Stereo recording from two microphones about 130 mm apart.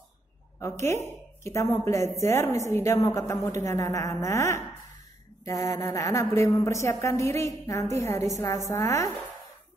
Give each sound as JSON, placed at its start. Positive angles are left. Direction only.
{"t": 0.6, "sound": "a woman's voice", "side_deg": 20}